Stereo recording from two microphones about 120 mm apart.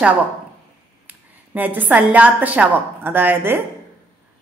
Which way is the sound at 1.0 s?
15° right (ahead or behind).